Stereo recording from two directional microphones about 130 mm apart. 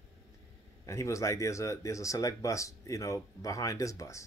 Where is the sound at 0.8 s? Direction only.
25° left (ahead or behind).